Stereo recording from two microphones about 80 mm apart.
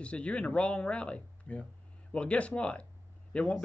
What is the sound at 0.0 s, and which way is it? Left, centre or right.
Speech, centre.